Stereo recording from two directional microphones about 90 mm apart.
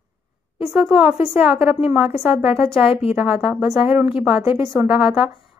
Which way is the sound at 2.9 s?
90° left.